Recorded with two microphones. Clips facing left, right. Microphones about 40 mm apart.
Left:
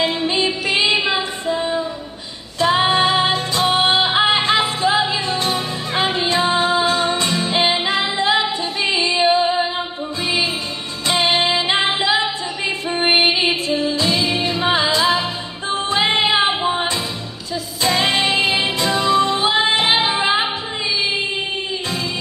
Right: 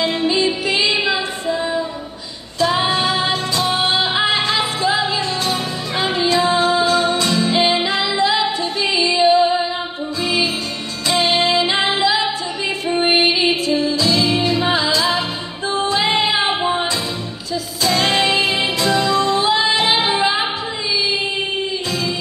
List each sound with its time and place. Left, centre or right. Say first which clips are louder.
0.0 s music: right 1 dB; left
2.6 s music: left 2 dB; left
5.4 s music: even; left
11.1 s music: right 1 dB; left
17.9 s music: right 2 dB; centre; by 20.3 s left